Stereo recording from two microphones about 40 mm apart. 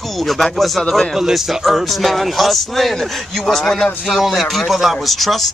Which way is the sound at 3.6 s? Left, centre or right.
Centre.